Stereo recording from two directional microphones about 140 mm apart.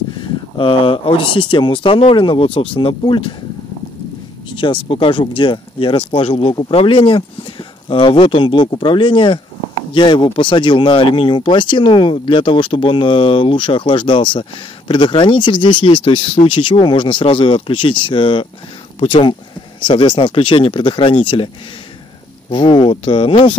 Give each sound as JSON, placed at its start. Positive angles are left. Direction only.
{"t": 0.2, "sound": "speech", "side_deg": 40}
{"t": 4.6, "sound": "speech", "side_deg": 35}
{"t": 22.5, "sound": "speech", "side_deg": 40}